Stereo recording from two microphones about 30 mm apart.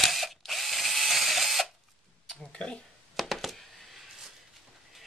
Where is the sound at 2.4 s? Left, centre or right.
Left.